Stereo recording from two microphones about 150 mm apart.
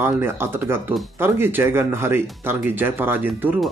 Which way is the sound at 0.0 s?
15° right (ahead or behind).